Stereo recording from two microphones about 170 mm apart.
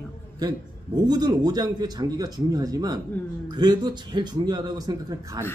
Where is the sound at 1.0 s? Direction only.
25° right (ahead or behind).